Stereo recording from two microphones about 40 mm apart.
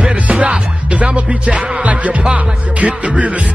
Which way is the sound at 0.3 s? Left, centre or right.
Right.